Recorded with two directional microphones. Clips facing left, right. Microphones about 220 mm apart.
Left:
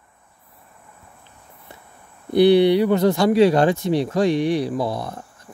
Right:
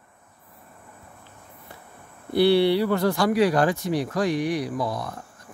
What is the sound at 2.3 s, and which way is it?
Speech, 20° left (ahead or behind).